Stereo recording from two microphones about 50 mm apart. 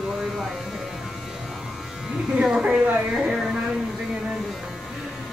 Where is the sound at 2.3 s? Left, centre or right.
Centre.